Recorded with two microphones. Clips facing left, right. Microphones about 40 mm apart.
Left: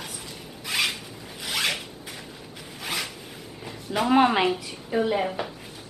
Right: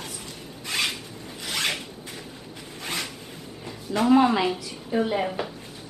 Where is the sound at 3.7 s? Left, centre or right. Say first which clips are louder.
Right 3 dB; centre.